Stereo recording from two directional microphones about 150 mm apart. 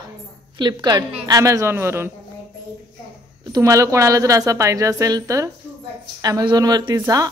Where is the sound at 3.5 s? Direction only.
20° right (ahead or behind).